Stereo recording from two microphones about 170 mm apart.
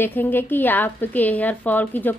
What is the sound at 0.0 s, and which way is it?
A woman's voice, 10° left (ahead or behind).